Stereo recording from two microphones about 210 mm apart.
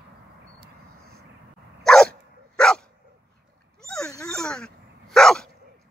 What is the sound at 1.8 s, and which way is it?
Dog, 5° left (ahead or behind).